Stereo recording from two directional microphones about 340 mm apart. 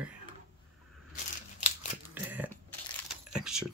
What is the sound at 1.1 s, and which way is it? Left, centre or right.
Scissors, centre.